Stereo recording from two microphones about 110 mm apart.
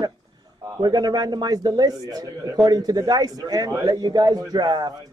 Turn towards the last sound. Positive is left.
turn(degrees=-40)  # may be behind; listen again after turning